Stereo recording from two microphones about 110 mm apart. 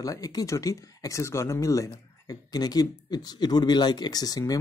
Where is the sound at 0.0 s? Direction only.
35° left (ahead or behind).